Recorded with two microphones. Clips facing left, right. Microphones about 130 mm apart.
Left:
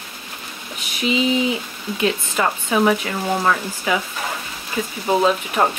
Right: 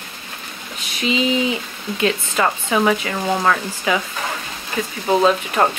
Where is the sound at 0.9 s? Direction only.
5° left (ahead or behind).